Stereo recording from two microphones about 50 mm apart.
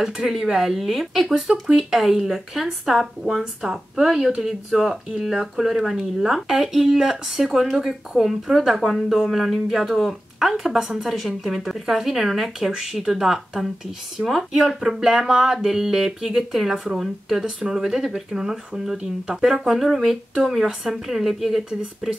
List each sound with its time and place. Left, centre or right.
0.0 s speech: centre